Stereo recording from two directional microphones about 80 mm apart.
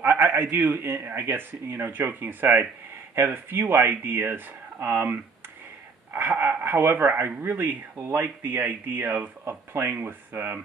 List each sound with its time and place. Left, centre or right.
0.4 s a man's voice: right